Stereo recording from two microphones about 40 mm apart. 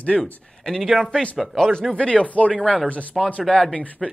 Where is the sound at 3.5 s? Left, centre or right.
Left.